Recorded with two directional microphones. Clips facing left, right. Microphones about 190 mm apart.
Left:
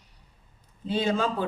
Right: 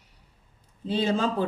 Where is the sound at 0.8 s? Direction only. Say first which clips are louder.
Right 1 dB; 30° right (ahead or behind).